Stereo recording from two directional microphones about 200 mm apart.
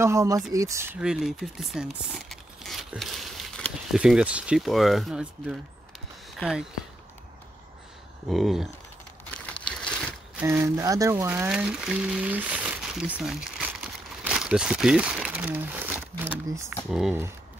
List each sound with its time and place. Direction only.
0.0 s speech: 15° right (ahead or behind)
8.3 s speech: centre (ahead or behind)
9.3 s crumpling: 5° left (ahead or behind)
10.3 s speech: 15° right (ahead or behind)